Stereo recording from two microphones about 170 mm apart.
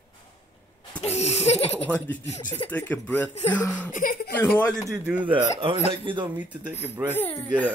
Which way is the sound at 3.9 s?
55° left (ahead or behind).